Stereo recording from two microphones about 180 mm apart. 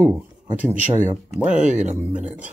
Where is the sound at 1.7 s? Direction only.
40° right (ahead or behind).